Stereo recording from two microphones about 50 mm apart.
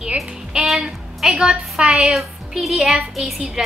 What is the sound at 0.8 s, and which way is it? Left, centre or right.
Music, centre.